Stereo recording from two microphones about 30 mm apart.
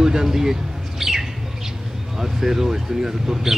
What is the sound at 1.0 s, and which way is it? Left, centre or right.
Bird, centre.